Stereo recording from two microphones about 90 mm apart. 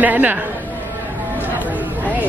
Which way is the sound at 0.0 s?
20° right (ahead or behind).